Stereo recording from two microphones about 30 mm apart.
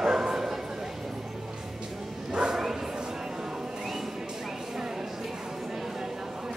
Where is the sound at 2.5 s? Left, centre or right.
Centre.